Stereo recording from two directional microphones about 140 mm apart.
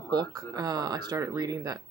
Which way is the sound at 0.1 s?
30° right (ahead or behind).